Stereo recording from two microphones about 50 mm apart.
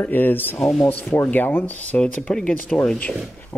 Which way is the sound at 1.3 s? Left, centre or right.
Left.